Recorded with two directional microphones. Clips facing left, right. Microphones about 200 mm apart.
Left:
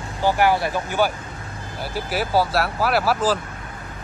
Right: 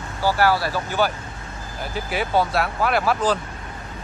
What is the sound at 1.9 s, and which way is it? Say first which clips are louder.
Speech: left 1 dB; 5° left (ahead or behind).